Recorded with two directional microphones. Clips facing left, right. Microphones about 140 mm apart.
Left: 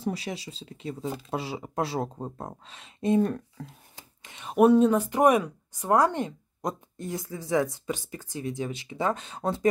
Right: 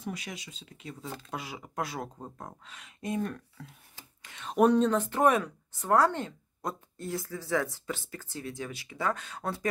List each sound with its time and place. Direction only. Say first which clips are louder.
0.0 s speech: left 7 dB; 30° left (ahead or behind)
3.9 s whispering: left 2 dB; 20° left (ahead or behind)
4.5 s speech: left 4 dB; 10° left (ahead or behind)